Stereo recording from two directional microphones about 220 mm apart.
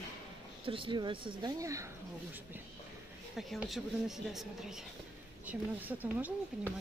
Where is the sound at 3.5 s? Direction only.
Centre (ahead or behind).